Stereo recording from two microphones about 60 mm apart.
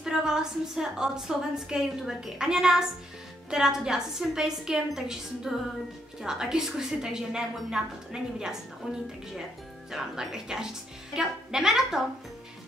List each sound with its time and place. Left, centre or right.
0.0 s a woman's voice: centre
9.8 s a woman's voice: centre